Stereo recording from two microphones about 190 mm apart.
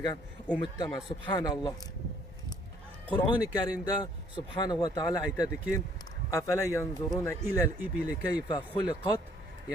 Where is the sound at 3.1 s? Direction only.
20° left (ahead or behind).